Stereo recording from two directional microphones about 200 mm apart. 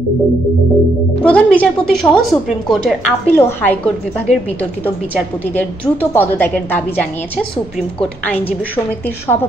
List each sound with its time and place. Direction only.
1.2 s a woman's voice: 5° left (ahead or behind)
3.3 s a woman's voice: 10° left (ahead or behind)